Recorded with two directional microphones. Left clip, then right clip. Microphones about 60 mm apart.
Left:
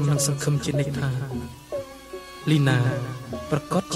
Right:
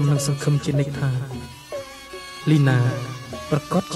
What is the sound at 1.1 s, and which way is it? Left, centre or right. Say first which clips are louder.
Music: even; right.